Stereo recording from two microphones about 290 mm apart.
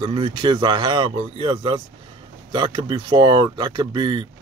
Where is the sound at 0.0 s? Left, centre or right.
Centre.